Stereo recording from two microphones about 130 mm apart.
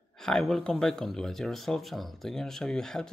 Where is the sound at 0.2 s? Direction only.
5° left (ahead or behind).